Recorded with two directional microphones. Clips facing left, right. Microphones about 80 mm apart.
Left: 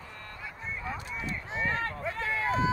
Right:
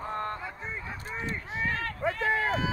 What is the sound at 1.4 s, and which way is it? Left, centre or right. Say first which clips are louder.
Run: left 2 dB; left.